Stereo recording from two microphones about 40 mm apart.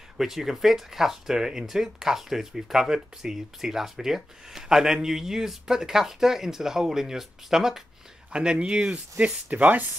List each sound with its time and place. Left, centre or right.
0.2 s speech: centre
8.3 s speech: right
9.5 s speech: right